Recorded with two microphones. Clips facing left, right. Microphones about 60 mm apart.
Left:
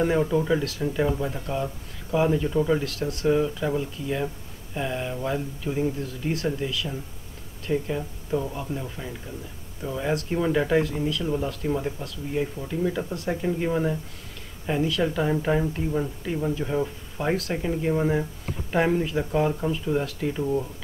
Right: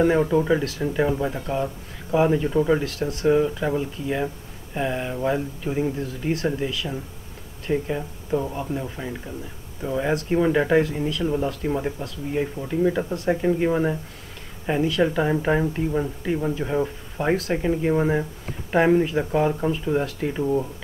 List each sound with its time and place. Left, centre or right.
0.0 s speech: centre
2.8 s speech: centre
3.3 s speech: centre
15.0 s speech: centre